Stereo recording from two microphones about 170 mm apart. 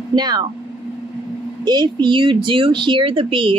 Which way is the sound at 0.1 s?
25° right (ahead or behind).